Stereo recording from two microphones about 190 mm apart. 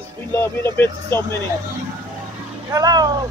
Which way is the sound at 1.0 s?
20° right (ahead or behind).